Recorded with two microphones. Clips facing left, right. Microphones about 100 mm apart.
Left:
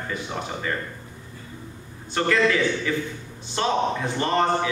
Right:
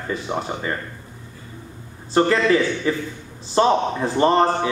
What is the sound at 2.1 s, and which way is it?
A man's voice, 30° right (ahead or behind).